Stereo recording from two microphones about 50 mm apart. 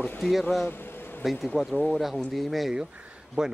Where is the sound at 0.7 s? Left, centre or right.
Left.